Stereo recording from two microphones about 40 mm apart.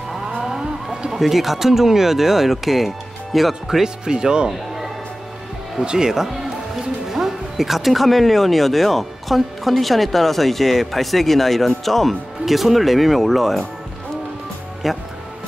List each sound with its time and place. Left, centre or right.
0.4 s vehicle: centre
1.1 s speech: centre
4.5 s music: centre
5.8 s speech: centre
14.8 s speech: centre